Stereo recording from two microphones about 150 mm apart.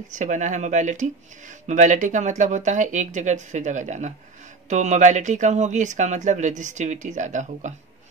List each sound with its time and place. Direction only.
0.1 s speech: 55° right (ahead or behind)